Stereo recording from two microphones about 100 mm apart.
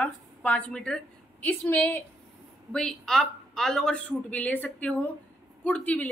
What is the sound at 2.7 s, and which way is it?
A woman's voice, 5° left (ahead or behind).